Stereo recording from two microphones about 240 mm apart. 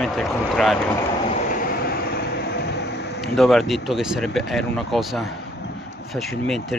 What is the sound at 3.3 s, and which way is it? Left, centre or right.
Speech, centre.